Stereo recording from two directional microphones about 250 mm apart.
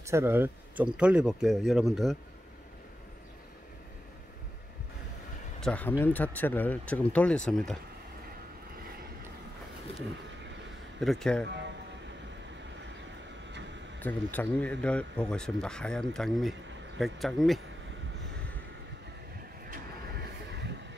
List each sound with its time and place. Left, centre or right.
0.0 s speech: centre
5.6 s speech: centre
11.0 s speech: centre
14.0 s speech: centre
20.5 s vehicle: right